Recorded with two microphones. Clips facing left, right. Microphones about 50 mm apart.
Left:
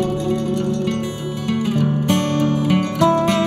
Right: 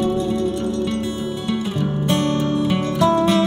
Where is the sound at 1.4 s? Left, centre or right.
Left.